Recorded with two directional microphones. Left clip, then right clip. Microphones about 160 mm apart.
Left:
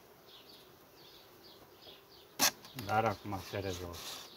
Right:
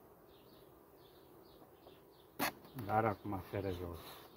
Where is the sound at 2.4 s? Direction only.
5° left (ahead or behind).